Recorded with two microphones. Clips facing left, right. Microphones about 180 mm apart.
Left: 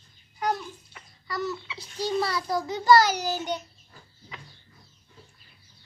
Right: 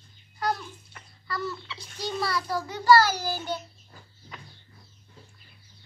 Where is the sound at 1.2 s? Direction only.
15° left (ahead or behind).